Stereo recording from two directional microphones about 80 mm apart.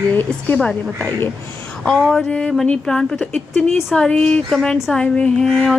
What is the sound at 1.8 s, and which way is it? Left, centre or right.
Speech, centre.